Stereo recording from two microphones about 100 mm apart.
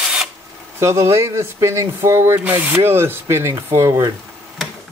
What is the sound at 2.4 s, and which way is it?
Speech, 20° right (ahead or behind).